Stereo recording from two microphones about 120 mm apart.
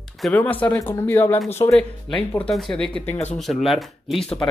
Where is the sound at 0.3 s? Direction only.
15° left (ahead or behind).